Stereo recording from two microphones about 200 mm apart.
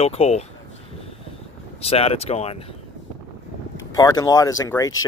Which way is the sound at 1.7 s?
30° left (ahead or behind).